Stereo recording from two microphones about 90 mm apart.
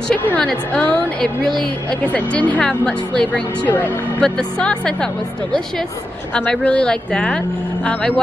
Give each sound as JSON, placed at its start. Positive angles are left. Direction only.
{"t": 0.1, "sound": "a woman's voice", "side_deg": 15}
{"t": 4.2, "sound": "speech", "side_deg": 10}